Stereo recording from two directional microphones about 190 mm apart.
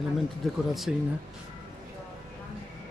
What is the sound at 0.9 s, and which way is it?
Speech, 5° right (ahead or behind).